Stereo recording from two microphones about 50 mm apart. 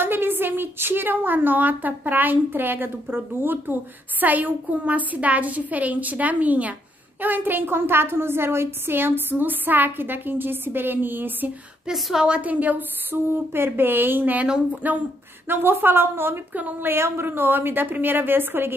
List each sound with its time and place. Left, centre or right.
0.0 s a woman's voice: right
4.2 s a woman's voice: right
11.9 s a woman's voice: centre
12.3 s a woman's voice: right